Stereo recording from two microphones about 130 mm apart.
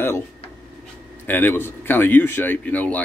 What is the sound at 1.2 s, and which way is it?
A man's voice, 15° left (ahead or behind).